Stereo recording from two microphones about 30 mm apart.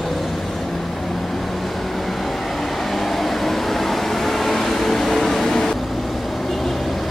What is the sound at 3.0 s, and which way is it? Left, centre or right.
Vehicle, centre.